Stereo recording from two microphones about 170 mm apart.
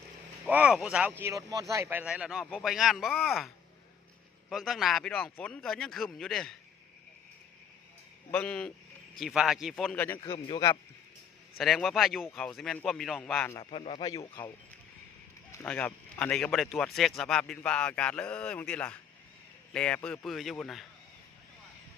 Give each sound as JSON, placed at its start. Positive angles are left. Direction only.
{"t": 0.5, "sound": "speech", "side_deg": -5}
{"t": 8.3, "sound": "speech", "side_deg": 5}
{"t": 10.2, "sound": "speech", "side_deg": 25}
{"t": 11.5, "sound": "speech", "side_deg": 0}
{"t": 13.6, "sound": "speech", "side_deg": 30}
{"t": 15.5, "sound": "speech", "side_deg": 10}